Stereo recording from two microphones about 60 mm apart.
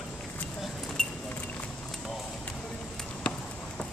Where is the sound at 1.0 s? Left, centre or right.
Centre.